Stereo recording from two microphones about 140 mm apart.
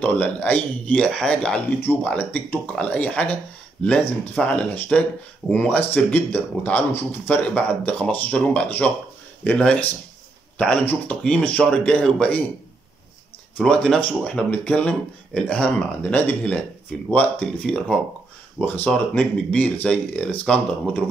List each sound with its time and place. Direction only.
0.0 s speech: 10° left (ahead or behind)
13.7 s speech: 5° left (ahead or behind)